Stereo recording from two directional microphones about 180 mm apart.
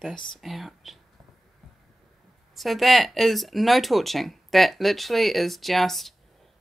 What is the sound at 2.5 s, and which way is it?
Speech, centre (ahead or behind).